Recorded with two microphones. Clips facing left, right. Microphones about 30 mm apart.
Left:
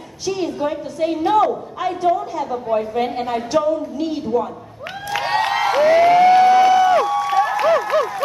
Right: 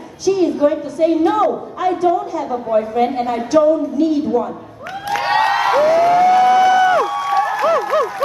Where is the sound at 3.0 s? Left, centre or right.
Centre.